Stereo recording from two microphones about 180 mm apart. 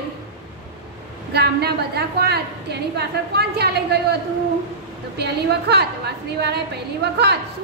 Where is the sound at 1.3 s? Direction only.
65° right (ahead or behind).